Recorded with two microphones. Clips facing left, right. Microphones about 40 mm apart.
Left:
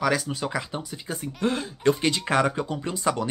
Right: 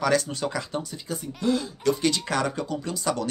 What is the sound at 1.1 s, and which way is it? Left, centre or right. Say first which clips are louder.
Speech: right 1 dB; left.